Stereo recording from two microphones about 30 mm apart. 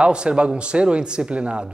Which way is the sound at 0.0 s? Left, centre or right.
Right.